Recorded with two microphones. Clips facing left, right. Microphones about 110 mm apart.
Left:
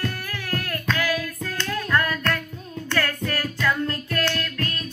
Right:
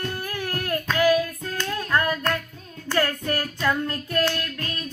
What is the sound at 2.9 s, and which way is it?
Child singing, 25° right (ahead or behind).